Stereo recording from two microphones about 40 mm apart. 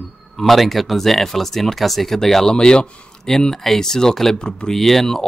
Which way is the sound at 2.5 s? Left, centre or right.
Left.